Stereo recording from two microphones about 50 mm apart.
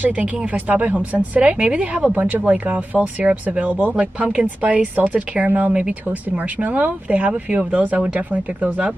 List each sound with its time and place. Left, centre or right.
0.0 s speech: right